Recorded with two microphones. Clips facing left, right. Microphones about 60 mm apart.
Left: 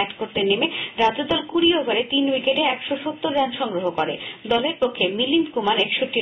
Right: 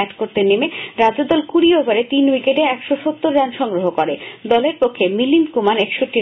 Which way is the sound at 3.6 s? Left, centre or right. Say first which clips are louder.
Right 6 dB; right.